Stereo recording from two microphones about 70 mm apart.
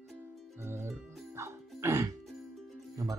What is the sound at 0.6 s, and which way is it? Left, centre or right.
Music, right.